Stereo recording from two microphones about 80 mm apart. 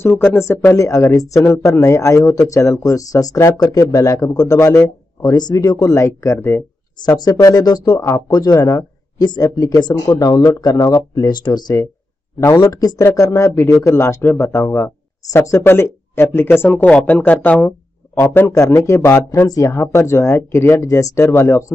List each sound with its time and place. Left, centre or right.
0.0 s a woman's voice: left
5.9 s speech: left
7.0 s speech: left
8.5 s speech: left
9.2 s speech: left
12.7 s speech: left
16.6 s a woman's voice: centre
18.9 s speech: left